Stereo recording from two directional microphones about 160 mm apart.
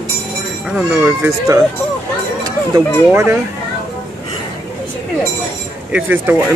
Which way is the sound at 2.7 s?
15° right (ahead or behind).